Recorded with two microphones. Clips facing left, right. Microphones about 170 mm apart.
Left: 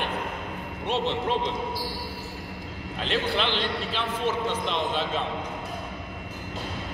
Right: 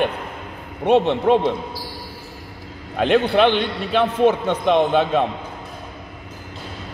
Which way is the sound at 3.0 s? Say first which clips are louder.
Right 12 dB; 60° right (ahead or behind).